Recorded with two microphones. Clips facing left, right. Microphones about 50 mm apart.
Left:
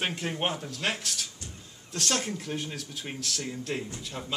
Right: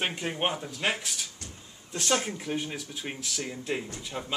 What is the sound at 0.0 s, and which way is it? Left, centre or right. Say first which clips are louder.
Speech: right 1 dB; centre.